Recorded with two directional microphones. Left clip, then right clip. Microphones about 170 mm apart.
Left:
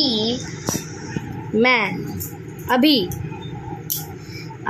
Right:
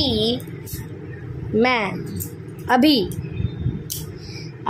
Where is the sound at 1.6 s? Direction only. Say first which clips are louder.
Left 2 dB; 5° right (ahead or behind).